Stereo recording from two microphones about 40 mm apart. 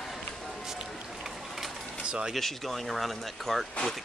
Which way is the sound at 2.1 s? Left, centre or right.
Right.